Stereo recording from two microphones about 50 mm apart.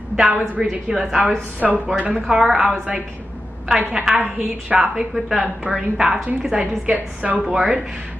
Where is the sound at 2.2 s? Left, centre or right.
Centre.